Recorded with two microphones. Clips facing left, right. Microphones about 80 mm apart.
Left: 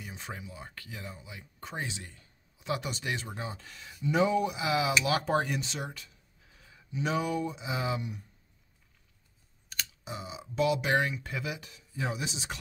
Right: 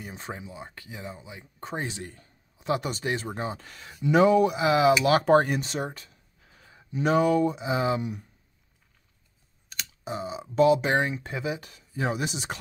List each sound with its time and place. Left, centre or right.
0.0 s speech: right
1.9 s a man's voice: right
4.6 s a man's voice: right
7.6 s speech: right
10.0 s speech: right
11.6 s speech: right